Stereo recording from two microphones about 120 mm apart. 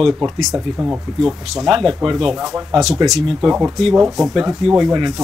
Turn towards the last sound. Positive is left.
turn(degrees=0)  # may be behind; listen again after turning